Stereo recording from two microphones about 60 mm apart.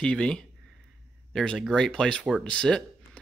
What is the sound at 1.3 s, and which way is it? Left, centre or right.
Speech, centre.